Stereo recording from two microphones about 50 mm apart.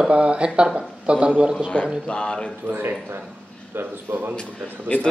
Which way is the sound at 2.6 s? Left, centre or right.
Right.